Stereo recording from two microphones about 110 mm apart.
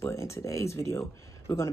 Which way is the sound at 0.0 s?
25° left (ahead or behind).